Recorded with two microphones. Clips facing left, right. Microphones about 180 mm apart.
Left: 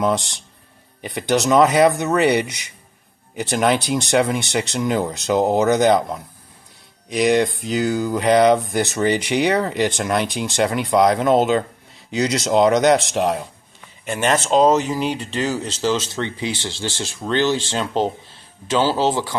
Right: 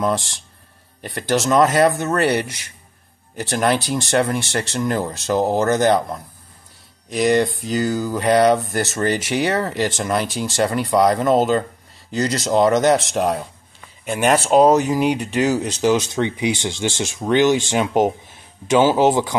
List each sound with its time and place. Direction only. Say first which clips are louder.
0.0 s speech: left 1 dB; centre (ahead or behind)
7.1 s speech: even; centre (ahead or behind); by 19.3 s 15° right (ahead or behind)